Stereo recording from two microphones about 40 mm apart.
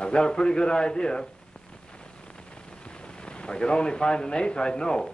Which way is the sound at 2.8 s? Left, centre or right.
Left.